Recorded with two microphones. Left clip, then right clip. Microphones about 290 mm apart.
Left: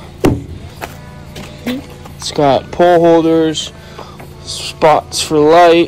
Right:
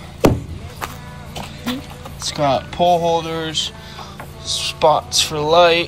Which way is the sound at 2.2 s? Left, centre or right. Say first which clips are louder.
Left 5 dB; centre.